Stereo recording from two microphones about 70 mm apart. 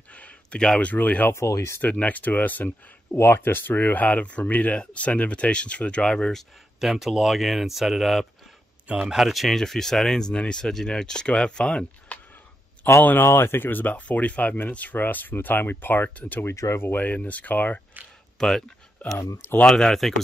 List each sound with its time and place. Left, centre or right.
0.1 s a sound: centre
0.7 s speech: centre
1.3 s speech: left
1.8 s speech: left
3.2 s speech: left; by 6.4 s centre
6.8 s speech: centre
8.8 s speech: centre
9.2 s speech: centre
13.0 s speech: left
16.4 s speech: left
18.4 s speech: centre
19.3 s speech: left
19.6 s speech: centre